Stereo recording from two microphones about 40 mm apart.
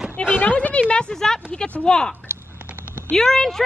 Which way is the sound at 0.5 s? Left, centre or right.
Left.